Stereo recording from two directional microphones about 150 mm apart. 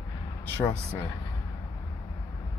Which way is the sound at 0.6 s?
15° left (ahead or behind).